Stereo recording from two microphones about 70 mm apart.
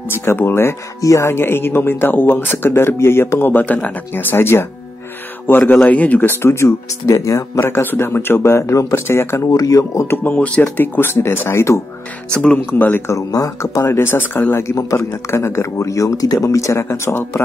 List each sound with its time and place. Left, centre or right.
0.2 s speech: left
5.5 s speech: left
6.4 s speech: left
7.6 s speech: left
9.5 s speech: left
10.0 s speech: left
10.3 s speech: left
10.6 s speech: left
12.4 s speech: centre
13.0 s speech: left
14.5 s speech: left